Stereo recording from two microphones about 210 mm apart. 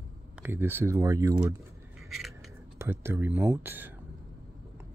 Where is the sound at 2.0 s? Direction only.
Centre (ahead or behind).